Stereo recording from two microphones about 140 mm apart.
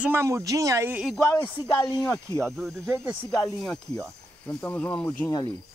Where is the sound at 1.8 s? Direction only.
15° left (ahead or behind).